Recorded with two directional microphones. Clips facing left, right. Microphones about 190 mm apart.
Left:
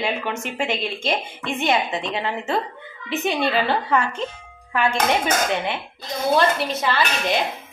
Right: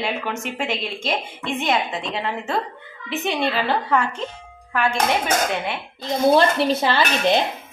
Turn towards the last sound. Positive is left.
turn(degrees=-30)  # may be behind; listen again after turning